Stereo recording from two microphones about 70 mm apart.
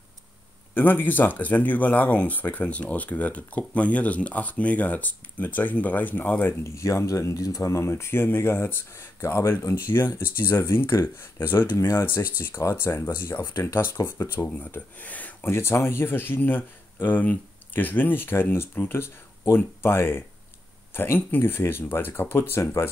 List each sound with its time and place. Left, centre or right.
0.7 s speech: left
6.7 s speech: left
9.9 s speech: left
10.9 s speech: left
11.3 s speech: left
14.6 s speech: left
15.5 s speech: left